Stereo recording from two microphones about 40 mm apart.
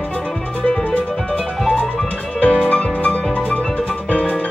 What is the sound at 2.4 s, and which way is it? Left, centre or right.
Music, left.